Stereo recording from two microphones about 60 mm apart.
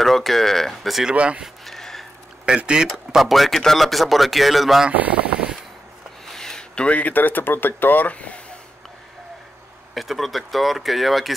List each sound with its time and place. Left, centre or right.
0.0 s speech: centre
1.0 s speech: centre
1.7 s a sound: centre
2.4 s speech: centre
3.2 s speech: centre
4.9 s speech: right
6.2 s speech: centre
9.9 s speech: centre